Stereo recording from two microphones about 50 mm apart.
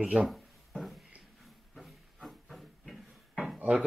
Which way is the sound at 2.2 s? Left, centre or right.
Centre.